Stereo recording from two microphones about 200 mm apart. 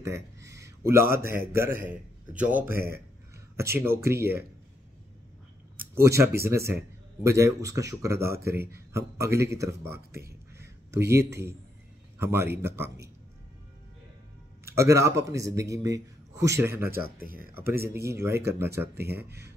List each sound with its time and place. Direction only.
0.5 s a man's voice: 15° right (ahead or behind)
6.0 s a man's voice: 15° right (ahead or behind)
14.8 s a man's voice: 15° right (ahead or behind)
17.2 s speech: 45° right (ahead or behind)
17.6 s a man's voice: 10° right (ahead or behind)